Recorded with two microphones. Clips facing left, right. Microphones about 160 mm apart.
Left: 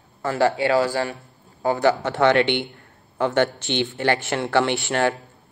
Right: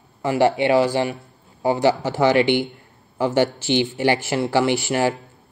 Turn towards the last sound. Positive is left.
turn(degrees=-10)  # may be behind; listen again after turning